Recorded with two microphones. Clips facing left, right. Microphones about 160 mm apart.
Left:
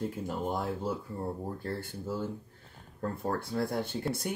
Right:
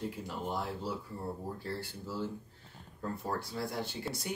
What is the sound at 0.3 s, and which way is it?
Speech, 50° left (ahead or behind).